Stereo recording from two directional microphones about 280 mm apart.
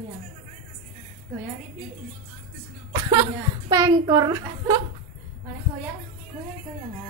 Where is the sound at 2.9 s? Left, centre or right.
Centre.